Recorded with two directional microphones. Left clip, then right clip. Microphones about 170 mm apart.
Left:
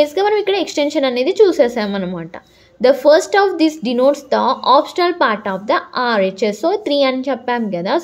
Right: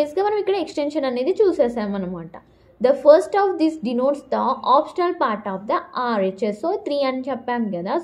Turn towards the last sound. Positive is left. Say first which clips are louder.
# left 6 dB
turn(degrees=25)  # may be behind; listen again after turning